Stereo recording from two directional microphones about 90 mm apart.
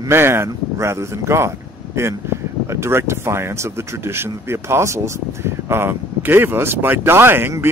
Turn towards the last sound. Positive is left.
turn(degrees=-25)  # may be behind; listen again after turning